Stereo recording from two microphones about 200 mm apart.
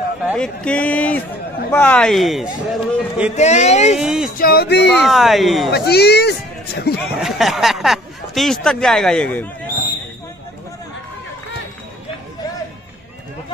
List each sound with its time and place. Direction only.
0.2 s a man's voice: 5° right (ahead or behind)
0.7 s a man's voice: 5° left (ahead or behind)
3.3 s speech: 35° left (ahead or behind)
4.0 s a man's voice: 5° right (ahead or behind)
4.4 s speech: 50° left (ahead or behind)
4.9 s a man's voice: centre (ahead or behind)
5.7 s speech: 55° left (ahead or behind)
7.2 s speech: centre (ahead or behind)